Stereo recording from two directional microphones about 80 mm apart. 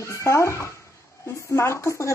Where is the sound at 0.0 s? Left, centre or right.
Left.